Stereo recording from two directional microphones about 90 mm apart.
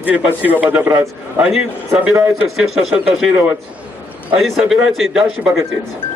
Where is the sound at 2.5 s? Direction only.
5° right (ahead or behind).